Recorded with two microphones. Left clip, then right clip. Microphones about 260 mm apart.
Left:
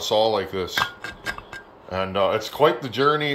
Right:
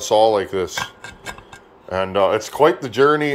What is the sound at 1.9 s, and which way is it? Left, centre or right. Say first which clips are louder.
Speech: right 4 dB; right.